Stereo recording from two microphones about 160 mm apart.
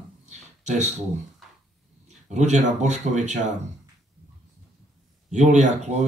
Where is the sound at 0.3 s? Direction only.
45° right (ahead or behind).